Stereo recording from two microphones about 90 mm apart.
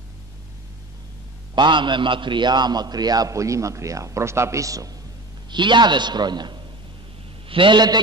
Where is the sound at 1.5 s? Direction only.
60° right (ahead or behind); by 4.9 s 40° right (ahead or behind).